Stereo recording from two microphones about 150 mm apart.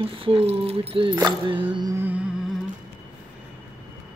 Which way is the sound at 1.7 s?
30° right (ahead or behind).